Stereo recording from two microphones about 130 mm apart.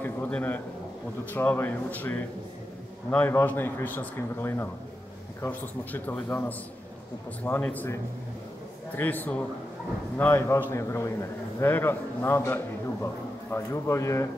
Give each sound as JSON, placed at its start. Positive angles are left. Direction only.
{"t": 0.0, "sound": "a man's voice", "side_deg": 15}